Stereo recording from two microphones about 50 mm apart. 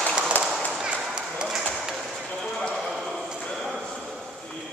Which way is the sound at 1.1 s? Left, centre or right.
Centre.